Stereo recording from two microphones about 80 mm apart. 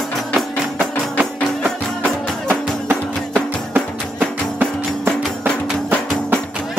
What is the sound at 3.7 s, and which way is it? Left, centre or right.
Music, right.